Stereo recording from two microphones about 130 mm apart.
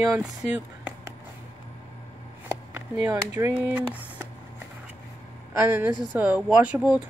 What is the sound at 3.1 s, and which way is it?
Speech, 30° right (ahead or behind).